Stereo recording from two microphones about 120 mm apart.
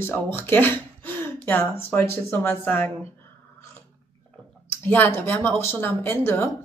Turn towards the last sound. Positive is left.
turn(degrees=20)  # may be behind; listen again after turning